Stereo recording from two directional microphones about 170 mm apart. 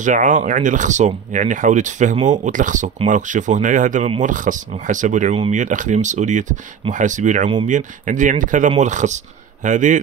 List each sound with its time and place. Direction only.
0.0 s speech: 50° right (ahead or behind)